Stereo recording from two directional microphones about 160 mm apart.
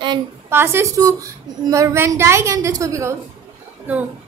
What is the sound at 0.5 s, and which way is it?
A woman's voice, 15° right (ahead or behind).